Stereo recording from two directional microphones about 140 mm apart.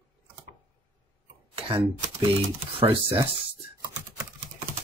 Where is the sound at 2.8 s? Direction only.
40° right (ahead or behind).